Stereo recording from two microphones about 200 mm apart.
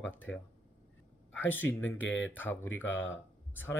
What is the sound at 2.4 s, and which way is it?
Speech, 10° left (ahead or behind).